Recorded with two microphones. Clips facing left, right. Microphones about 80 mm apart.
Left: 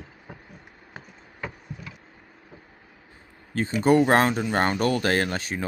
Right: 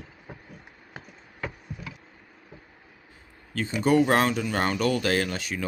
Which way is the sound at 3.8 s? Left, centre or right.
Left.